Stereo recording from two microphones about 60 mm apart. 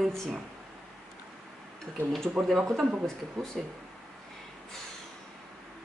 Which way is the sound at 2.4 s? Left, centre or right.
Centre.